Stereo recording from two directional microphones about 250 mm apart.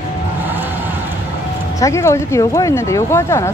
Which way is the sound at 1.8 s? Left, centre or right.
Centre.